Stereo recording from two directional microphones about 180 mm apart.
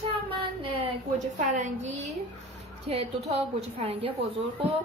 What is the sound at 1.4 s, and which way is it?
A woman's voice, 40° right (ahead or behind).